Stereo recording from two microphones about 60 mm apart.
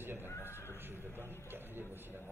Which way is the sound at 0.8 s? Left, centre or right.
Right.